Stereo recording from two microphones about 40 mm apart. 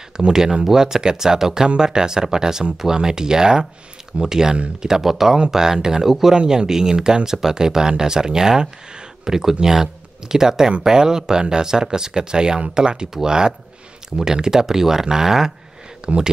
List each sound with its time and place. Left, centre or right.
0.3 s speech: centre
6.3 s speech: right
16.1 s speech: right